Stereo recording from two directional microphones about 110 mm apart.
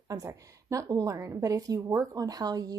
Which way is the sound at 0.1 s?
30° right (ahead or behind).